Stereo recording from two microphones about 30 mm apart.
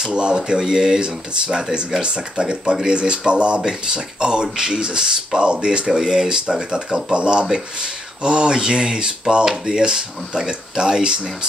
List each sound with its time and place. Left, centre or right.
0.1 s speech: right
0.5 s speech: right
5.4 s speech: right
7.2 s speech: right